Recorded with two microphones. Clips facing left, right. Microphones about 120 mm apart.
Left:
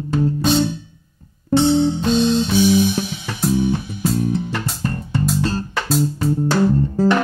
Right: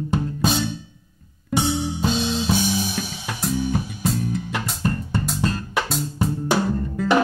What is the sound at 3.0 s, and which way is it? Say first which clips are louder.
Music: left 5 dB; 30° left (ahead or behind).